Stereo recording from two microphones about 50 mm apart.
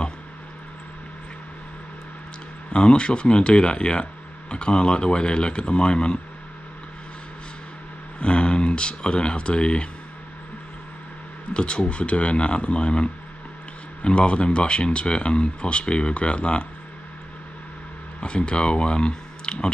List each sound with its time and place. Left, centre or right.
2.7 s speech: centre
8.2 s a sound: left
11.5 s speech: left
18.2 s speech: left